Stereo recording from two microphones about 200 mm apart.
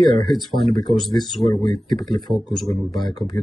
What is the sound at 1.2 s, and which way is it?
Speech, centre (ahead or behind).